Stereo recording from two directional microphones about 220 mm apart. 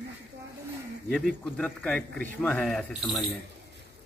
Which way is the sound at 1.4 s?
5° left (ahead or behind).